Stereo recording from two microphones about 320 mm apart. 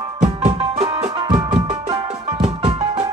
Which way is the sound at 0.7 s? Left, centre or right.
Centre.